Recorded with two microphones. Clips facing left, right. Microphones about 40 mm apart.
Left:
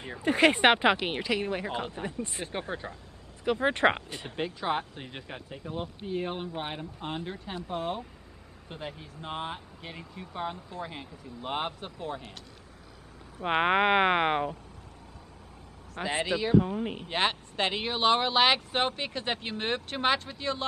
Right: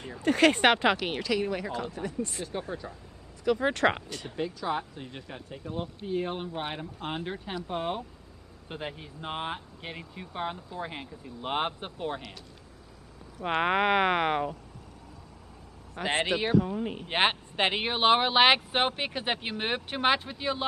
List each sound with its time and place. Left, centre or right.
0.2 s speech: centre; by 3.0 s left
3.5 s speech: centre
4.4 s speech: left
5.5 s speech: centre; by 12.2 s right
13.4 s speech: centre
15.9 s a man's voice: right
16.5 s speech: centre
17.1 s speech: right; by 20.6 s centre